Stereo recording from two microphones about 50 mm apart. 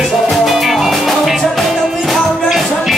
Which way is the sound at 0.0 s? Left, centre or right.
Centre.